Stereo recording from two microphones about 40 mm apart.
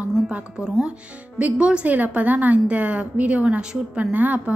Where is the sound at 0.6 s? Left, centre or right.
Centre.